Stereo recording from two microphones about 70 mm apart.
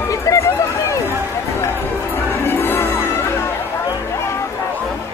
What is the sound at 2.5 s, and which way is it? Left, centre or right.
Music, left.